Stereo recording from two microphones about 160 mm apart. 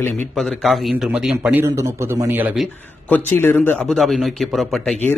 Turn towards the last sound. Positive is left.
turn(degrees=0)  # may be behind; listen again after turning